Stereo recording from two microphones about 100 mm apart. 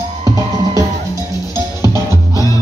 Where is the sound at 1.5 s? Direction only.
30° right (ahead or behind).